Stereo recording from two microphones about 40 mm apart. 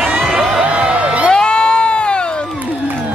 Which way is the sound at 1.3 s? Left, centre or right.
Left.